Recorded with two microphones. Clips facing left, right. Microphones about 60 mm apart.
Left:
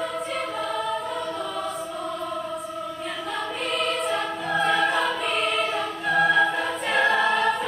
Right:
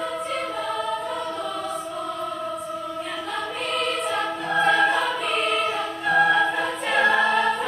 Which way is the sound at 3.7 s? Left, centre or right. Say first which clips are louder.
Right 1 dB; centre.